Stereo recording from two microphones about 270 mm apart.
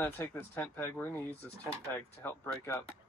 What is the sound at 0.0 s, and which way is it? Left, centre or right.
Speech, centre.